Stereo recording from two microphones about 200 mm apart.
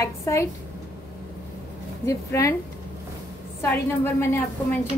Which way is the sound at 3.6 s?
10° left (ahead or behind).